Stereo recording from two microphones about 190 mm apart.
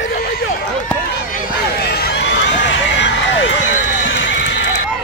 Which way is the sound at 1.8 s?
60° left (ahead or behind).